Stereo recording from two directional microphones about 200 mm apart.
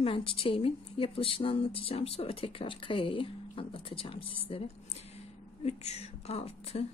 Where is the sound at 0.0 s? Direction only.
25° left (ahead or behind).